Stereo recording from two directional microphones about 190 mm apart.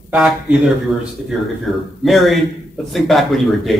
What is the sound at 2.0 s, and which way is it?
A man's voice, centre (ahead or behind).